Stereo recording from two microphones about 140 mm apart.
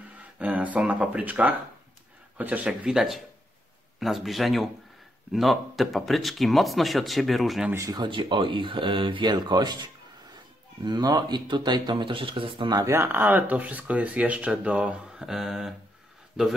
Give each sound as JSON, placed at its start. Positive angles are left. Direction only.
{"t": 0.4, "sound": "speech", "side_deg": -10}
{"t": 7.7, "sound": "speech", "side_deg": -25}
{"t": 12.9, "sound": "speech", "side_deg": -15}